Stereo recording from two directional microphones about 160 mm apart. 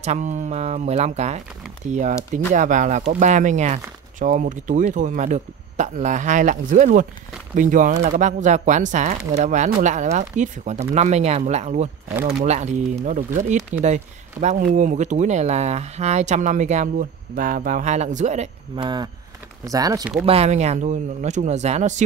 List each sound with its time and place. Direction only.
0.0 s speech: 45° right (ahead or behind)
17.4 s speech: 60° right (ahead or behind)
19.6 s speech: 20° right (ahead or behind)
20.2 s speech: 40° right (ahead or behind)